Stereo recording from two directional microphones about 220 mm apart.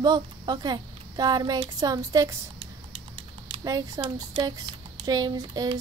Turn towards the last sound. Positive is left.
turn(degrees=-20)  # may be behind; listen again after turning